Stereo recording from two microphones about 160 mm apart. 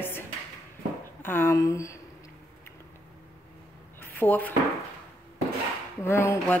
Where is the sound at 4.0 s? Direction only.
10° left (ahead or behind).